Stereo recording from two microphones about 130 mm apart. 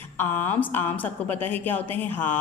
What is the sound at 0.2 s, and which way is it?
A woman's voice, 15° left (ahead or behind).